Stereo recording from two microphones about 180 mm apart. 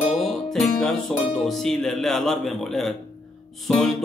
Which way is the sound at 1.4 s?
Centre (ahead or behind).